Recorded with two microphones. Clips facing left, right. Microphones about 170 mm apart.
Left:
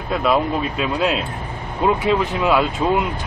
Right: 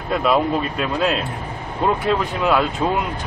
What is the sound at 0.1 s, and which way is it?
Speech, centre (ahead or behind).